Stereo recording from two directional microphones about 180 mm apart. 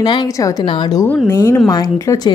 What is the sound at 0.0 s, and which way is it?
A woman's voice, 25° left (ahead or behind).